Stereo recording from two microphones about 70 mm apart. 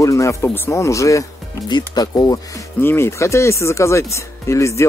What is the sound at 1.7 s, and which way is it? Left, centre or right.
Speech, left.